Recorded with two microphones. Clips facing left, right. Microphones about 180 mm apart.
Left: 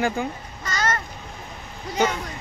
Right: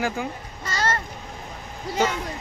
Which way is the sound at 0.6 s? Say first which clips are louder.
Even; 30° right (ahead or behind).